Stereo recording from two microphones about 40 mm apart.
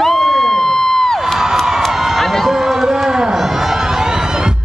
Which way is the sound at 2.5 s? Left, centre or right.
Centre.